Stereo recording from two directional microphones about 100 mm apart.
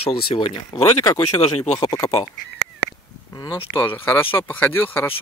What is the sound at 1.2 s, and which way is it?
Speech, 90° left.